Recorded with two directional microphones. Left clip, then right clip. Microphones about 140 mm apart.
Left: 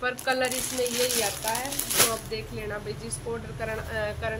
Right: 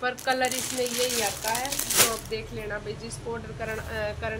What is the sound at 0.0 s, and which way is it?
Speech, 10° right (ahead or behind).